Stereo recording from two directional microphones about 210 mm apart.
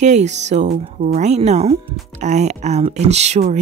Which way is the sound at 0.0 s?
35° right (ahead or behind).